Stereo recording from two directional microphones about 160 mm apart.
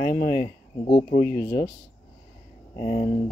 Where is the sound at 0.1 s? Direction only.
60° left (ahead or behind).